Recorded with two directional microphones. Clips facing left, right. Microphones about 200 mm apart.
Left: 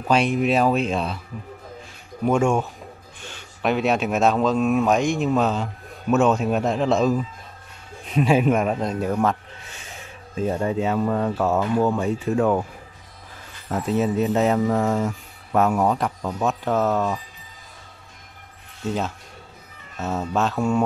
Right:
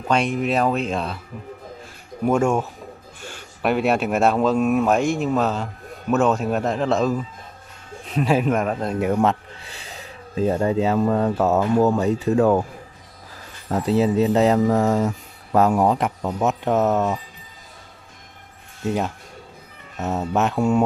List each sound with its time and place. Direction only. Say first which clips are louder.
0.1 s speech: left 1 dB; centre (ahead or behind)
2.2 s speech: right 1 dB; 5° right (ahead or behind)
8.2 s speech: left 1 dB; 5° left (ahead or behind)
9.0 s speech: right 5 dB; 25° right (ahead or behind)
13.8 s speech: right 3 dB; 30° right (ahead or behind)
20.0 s speech: right 2 dB; 20° right (ahead or behind)